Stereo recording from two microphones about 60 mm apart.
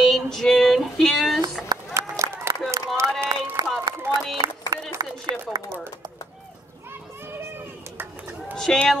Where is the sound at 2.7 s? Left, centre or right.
Right.